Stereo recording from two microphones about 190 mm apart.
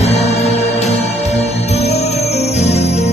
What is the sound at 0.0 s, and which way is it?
Music, 35° left (ahead or behind).